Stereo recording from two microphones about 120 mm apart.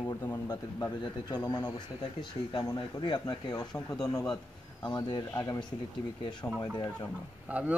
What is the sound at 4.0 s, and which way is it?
A man's voice, 30° left (ahead or behind).